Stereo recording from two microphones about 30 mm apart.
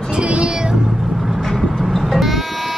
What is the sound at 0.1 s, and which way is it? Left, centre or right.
Speech, right.